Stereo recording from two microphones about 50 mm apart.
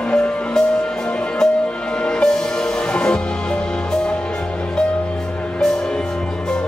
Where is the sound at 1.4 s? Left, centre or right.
Centre.